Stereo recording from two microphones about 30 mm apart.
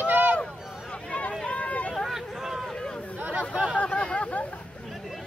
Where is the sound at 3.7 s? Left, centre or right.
Left.